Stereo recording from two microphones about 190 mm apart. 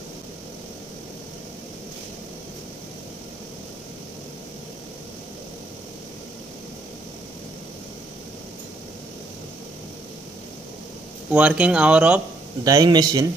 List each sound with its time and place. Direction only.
11.3 s speech: 5° right (ahead or behind)
12.6 s a man's voice: 20° right (ahead or behind)